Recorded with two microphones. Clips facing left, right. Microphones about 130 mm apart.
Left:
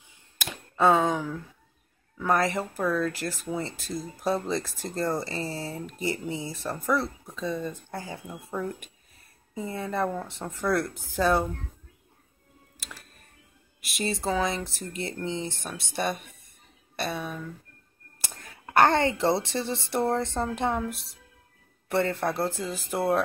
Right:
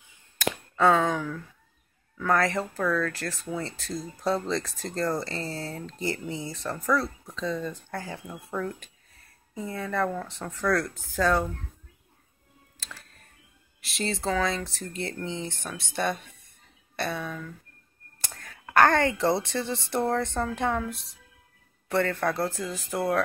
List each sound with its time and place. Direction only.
0.7 s speech: 15° left (ahead or behind)
13.9 s speech: 15° left (ahead or behind)
18.3 s a sound: 20° left (ahead or behind)
19.4 s speech: 20° left (ahead or behind)
21.8 s speech: 20° left (ahead or behind)